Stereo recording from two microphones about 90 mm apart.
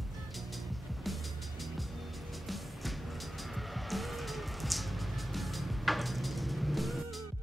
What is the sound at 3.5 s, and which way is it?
Music, centre (ahead or behind).